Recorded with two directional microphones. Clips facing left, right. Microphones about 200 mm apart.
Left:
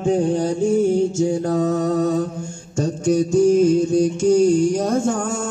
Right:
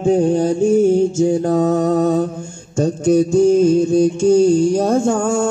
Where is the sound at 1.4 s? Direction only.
45° right (ahead or behind).